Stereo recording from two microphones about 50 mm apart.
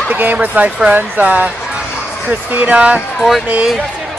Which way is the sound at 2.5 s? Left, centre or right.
Right.